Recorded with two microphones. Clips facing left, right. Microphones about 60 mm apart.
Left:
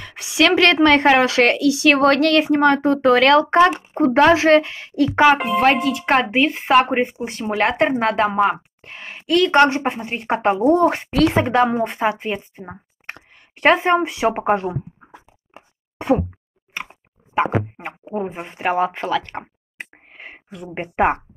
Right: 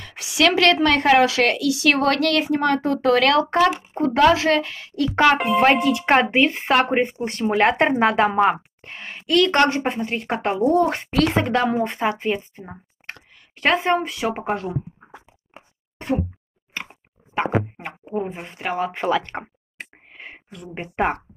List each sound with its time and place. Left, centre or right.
0.4 s a woman's voice: left
4.6 s a woman's voice: centre
5.6 s speech: centre
9.6 s a woman's voice: left
11.7 s a woman's voice: centre
12.6 s speech: left
17.4 s a woman's voice: centre
18.9 s speech: centre
20.1 s a sound: centre
20.6 s a woman's voice: left